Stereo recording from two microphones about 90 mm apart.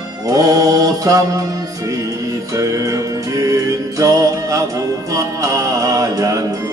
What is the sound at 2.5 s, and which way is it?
Music, 35° right (ahead or behind).